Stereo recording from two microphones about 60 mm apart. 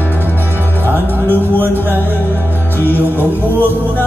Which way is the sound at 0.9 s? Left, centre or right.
Right.